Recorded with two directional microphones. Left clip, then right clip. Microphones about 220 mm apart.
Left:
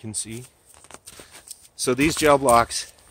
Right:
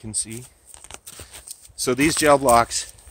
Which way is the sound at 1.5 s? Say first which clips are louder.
Even; 20° right (ahead or behind).